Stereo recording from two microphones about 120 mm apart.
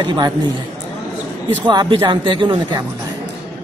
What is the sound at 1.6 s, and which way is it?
Speech, 40° right (ahead or behind).